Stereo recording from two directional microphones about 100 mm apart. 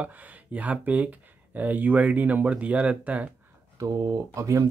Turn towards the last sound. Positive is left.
turn(degrees=-30)  # may be behind; listen again after turning